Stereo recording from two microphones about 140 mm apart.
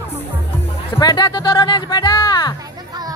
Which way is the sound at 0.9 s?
30° left (ahead or behind).